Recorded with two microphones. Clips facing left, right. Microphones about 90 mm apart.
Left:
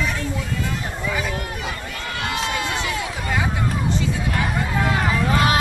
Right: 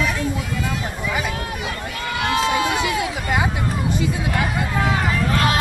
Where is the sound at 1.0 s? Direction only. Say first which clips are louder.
Even; 15° right (ahead or behind).